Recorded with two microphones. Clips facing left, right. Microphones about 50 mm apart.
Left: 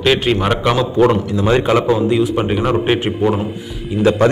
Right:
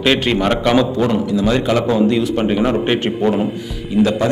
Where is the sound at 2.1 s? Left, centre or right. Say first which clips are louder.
Left 1 dB; centre.